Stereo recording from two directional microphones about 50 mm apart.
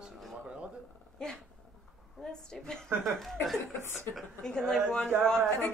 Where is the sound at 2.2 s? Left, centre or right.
Centre.